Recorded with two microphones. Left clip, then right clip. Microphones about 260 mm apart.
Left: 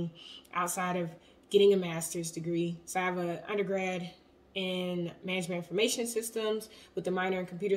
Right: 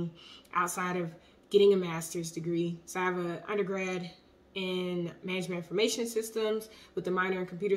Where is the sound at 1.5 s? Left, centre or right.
Centre.